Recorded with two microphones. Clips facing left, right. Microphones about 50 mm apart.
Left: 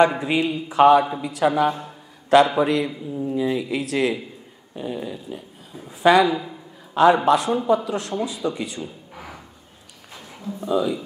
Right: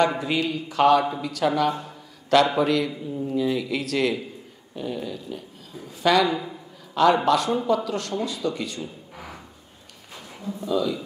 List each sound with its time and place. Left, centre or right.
0.0 s a man's voice: centre
2.9 s speech: centre
3.3 s a man's voice: centre
6.2 s speech: centre
6.9 s a sound: centre
7.4 s speech: centre
10.6 s a man's voice: left